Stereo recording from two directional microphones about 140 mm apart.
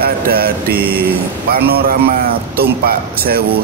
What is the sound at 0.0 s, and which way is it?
Mantra, 90° right.